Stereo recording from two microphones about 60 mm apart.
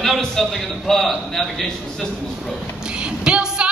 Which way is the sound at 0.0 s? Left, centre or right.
Centre.